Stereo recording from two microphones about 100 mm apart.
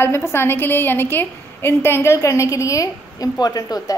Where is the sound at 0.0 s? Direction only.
25° left (ahead or behind).